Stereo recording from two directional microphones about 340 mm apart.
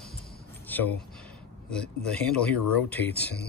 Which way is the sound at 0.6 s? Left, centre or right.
Centre.